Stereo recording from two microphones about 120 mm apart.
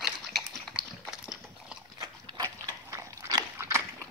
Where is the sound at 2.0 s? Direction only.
30° right (ahead or behind).